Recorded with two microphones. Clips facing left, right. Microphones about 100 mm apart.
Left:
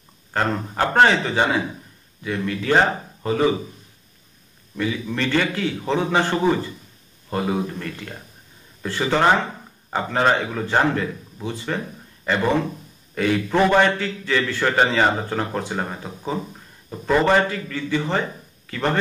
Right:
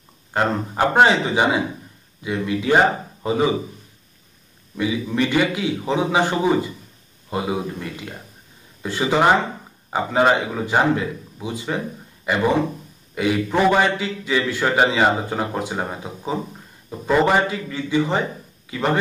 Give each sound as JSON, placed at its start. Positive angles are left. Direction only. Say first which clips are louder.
{"t": 0.3, "sound": "a man's voice", "louder": "right 2 dB", "side_deg": -15}
{"t": 4.7, "sound": "a man's voice", "louder": "right 3 dB", "side_deg": -15}